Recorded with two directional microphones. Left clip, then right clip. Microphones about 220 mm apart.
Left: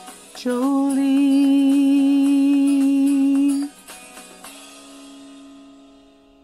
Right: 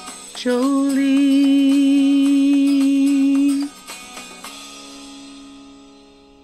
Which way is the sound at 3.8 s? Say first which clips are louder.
Right 6 dB; 45° right (ahead or behind).